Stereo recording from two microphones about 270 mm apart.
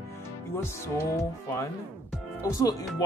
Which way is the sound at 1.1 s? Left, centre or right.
Centre.